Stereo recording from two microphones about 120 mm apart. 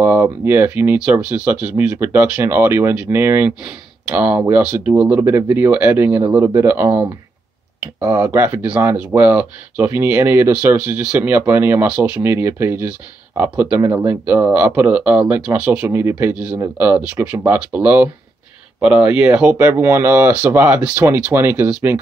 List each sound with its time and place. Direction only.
0.0 s speech: 15° right (ahead or behind)
15.9 s speech: 20° right (ahead or behind)